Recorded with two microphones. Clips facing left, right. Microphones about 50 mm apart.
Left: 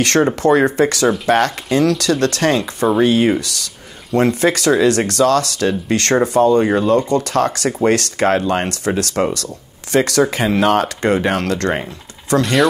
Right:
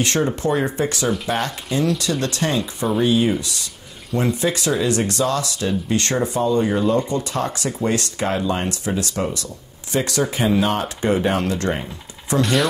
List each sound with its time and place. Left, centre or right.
0.4 s speech: left
12.4 s speech: centre